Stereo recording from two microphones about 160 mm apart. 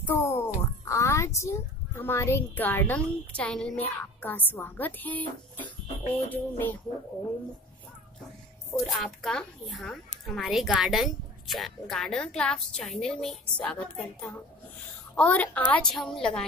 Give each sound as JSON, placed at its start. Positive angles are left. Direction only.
{"t": 0.0, "sound": "a sound", "side_deg": 15}
{"t": 0.6, "sound": "speech", "side_deg": 20}
{"t": 8.8, "sound": "speech", "side_deg": 0}